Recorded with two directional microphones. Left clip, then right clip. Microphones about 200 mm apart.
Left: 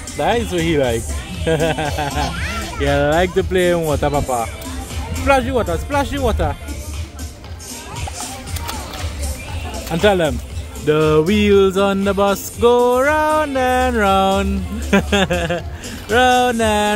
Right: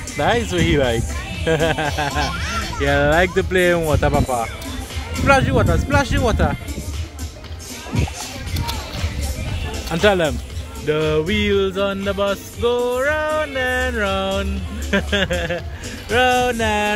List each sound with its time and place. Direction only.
0.2 s speech: centre (ahead or behind)
9.8 s speech: 10° left (ahead or behind)
10.9 s music: 30° left (ahead or behind)